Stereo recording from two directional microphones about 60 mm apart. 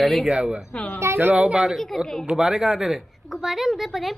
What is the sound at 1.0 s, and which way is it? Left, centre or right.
Speech, right.